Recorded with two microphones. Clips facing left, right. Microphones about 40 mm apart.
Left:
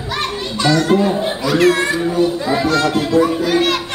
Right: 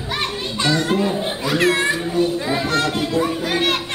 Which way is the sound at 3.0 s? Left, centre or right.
Left.